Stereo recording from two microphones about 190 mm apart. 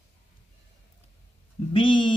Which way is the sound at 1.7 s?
25° left (ahead or behind).